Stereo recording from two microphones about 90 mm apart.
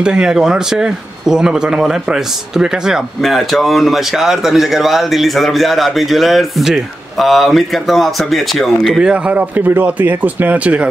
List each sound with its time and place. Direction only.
0.0 s speech: 10° right (ahead or behind)
9.1 s speech: 15° right (ahead or behind)